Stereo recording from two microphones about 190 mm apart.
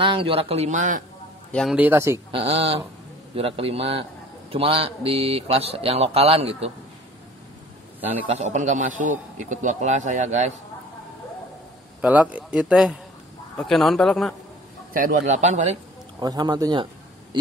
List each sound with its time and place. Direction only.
0.0 s speech: 30° right (ahead or behind)
1.5 s speech: 5° left (ahead or behind)
1.8 s speech: 10° right (ahead or behind)
2.3 s speech: 30° right (ahead or behind)
8.3 s speech: 35° right (ahead or behind)
12.0 s speech: 10° right (ahead or behind)
15.0 s speech: 45° right (ahead or behind)
16.2 s a man's voice: 20° right (ahead or behind)